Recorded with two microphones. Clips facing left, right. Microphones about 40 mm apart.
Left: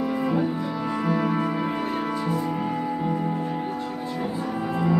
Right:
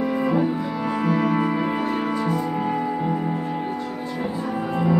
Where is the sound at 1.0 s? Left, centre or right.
Centre.